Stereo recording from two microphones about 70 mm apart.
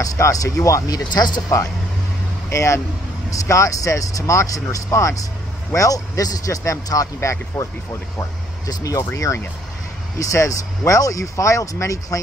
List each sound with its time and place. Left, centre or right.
0.0 s a man's voice: left
2.5 s a man's voice: left
8.2 s speech: left